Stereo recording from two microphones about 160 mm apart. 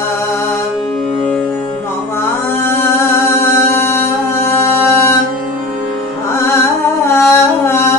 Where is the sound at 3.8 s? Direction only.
15° left (ahead or behind).